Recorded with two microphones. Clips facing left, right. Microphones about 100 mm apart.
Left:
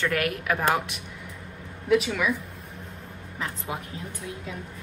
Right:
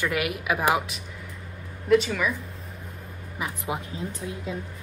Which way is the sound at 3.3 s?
15° right (ahead or behind).